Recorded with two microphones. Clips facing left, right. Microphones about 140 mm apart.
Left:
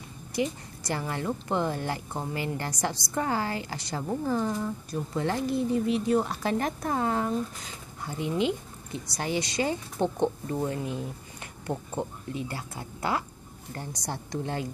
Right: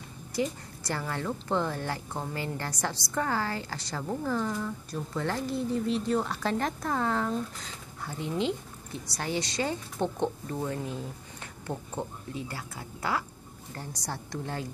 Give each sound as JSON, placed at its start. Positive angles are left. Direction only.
{"t": 0.3, "sound": "a woman's voice", "side_deg": 15}